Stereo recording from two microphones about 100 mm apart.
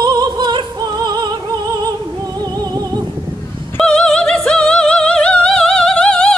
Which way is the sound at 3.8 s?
10° left (ahead or behind).